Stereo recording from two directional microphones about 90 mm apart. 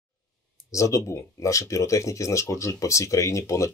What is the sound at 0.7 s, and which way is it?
Speech, 35° left (ahead or behind).